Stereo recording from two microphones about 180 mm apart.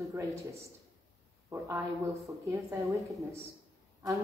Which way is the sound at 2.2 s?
15° right (ahead or behind).